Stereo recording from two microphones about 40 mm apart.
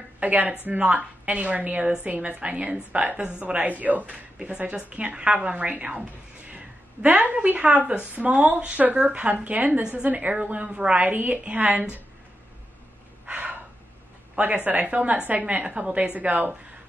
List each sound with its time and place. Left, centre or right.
0.2 s a woman's voice: right
13.3 s gasp: right
14.6 s a woman's voice: right
16.0 s a woman's voice: right